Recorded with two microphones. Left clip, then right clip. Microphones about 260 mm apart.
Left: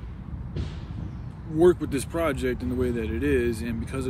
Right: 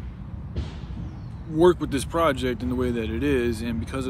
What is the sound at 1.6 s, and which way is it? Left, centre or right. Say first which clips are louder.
Speech: right 1 dB; centre.